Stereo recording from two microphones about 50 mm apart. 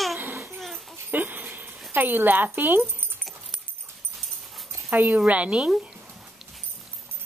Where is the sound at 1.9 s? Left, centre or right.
Right.